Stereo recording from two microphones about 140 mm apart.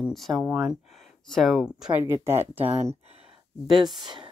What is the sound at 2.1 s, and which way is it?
Speech, 20° right (ahead or behind).